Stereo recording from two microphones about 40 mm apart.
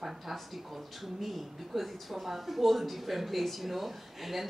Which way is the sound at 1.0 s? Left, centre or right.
Centre.